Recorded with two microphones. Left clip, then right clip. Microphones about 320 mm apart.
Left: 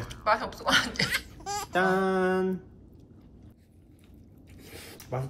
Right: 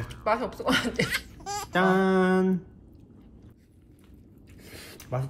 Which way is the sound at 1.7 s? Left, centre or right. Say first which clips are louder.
Right 2 dB; centre.